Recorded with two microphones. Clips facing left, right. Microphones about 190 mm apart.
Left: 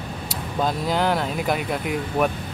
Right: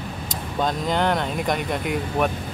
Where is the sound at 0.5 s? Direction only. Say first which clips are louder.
Even; 5° left (ahead or behind).